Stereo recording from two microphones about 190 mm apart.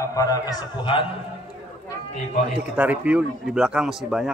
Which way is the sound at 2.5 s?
5° right (ahead or behind).